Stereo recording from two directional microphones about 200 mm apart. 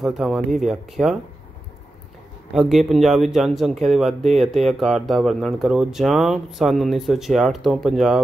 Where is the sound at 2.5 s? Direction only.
Centre (ahead or behind).